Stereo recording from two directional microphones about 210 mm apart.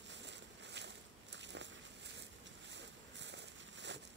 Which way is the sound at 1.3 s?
60° right (ahead or behind).